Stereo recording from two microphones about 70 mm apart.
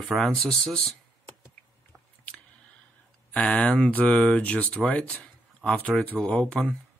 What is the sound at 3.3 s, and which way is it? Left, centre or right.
Speech, centre.